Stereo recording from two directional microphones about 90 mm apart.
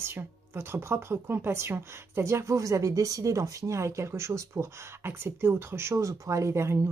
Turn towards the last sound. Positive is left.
turn(degrees=-30)  # may be behind; listen again after turning